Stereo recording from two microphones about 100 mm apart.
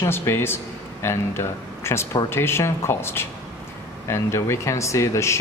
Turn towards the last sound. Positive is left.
turn(degrees=30)  # may be behind; listen again after turning